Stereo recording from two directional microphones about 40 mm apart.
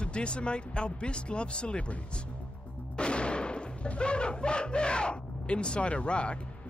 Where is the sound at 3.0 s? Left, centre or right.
Left.